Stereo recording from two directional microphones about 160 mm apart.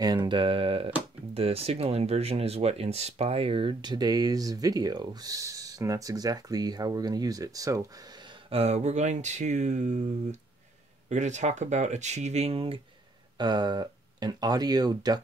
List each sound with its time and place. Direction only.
0.0 s speech: 25° right (ahead or behind)
8.5 s speech: 40° right (ahead or behind)
11.1 s speech: 50° right (ahead or behind); by 15.2 s 25° right (ahead or behind)